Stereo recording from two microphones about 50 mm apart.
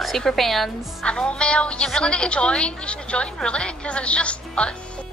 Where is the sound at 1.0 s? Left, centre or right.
Centre.